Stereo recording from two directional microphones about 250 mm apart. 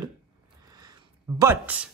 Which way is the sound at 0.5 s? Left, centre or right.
Centre.